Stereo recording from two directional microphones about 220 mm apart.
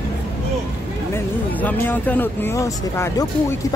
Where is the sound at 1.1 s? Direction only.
10° left (ahead or behind).